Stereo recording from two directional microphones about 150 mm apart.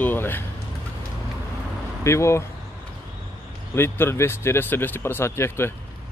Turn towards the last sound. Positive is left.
turn(degrees=15)  # may be behind; listen again after turning